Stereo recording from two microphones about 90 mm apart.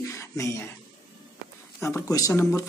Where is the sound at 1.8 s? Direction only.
35° left (ahead or behind).